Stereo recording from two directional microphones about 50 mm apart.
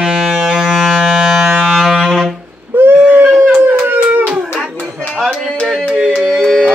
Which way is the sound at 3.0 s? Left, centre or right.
Right.